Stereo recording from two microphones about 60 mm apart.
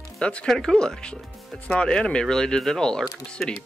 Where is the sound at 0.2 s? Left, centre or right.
Centre.